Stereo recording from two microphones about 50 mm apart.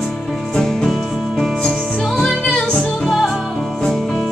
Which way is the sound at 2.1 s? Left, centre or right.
Centre.